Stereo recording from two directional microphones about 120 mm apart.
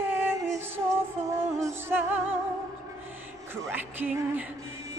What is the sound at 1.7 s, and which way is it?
Music, 20° right (ahead or behind).